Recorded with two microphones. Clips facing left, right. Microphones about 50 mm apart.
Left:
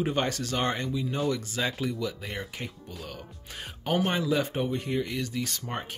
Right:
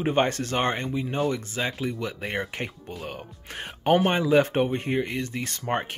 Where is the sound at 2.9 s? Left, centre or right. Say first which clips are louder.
Right 5 dB; right.